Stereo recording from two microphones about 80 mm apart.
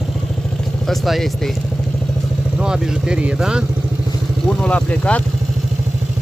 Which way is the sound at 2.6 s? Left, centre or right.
Centre.